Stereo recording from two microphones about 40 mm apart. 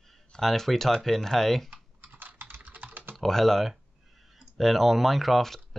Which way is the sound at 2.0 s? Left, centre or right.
Right.